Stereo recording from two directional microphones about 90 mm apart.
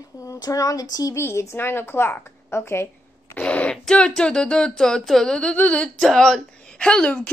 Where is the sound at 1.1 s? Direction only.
30° left (ahead or behind).